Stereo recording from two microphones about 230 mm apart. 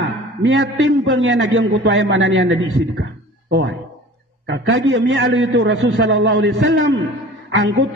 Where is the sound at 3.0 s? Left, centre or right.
Right.